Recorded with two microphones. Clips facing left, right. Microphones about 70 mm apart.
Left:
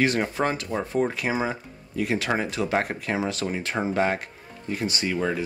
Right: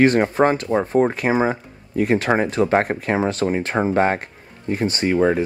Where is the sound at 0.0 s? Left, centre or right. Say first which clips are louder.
Right 8 dB; right.